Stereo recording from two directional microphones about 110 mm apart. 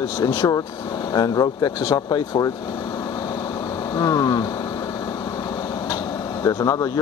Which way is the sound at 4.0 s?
40° left (ahead or behind).